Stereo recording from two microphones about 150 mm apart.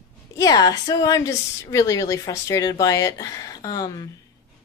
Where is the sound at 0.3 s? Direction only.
25° left (ahead or behind).